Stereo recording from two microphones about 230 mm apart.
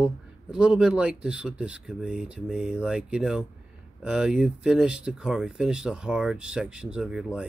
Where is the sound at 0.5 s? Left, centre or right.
Centre.